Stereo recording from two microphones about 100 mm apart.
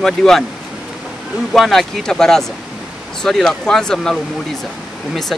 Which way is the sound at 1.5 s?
Centre (ahead or behind).